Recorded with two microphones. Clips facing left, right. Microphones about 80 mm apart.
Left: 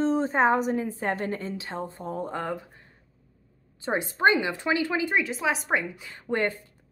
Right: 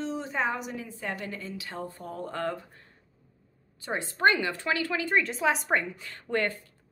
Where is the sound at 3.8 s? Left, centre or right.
Left.